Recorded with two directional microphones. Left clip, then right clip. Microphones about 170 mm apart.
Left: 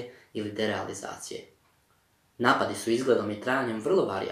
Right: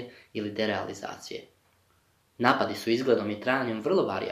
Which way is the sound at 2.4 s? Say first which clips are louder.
Even; 15° right (ahead or behind).